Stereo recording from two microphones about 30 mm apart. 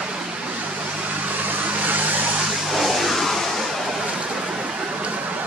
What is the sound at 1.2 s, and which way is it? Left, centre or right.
Vehicle, right.